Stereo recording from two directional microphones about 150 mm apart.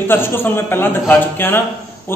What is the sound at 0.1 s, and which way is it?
A man's voice, 15° left (ahead or behind).